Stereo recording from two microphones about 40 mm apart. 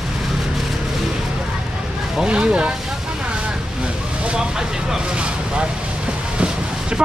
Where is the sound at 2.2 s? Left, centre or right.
Right.